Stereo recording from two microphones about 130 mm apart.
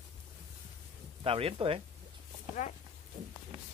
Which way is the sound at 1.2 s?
45° right (ahead or behind).